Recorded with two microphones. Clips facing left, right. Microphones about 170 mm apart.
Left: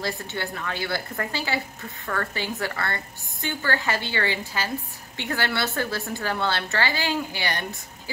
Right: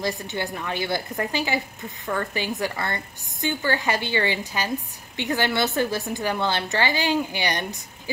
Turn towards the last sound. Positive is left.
turn(degrees=-20)  # may be behind; listen again after turning